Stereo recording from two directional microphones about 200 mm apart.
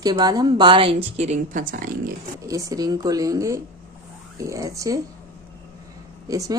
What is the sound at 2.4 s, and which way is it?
A woman's voice, 15° right (ahead or behind).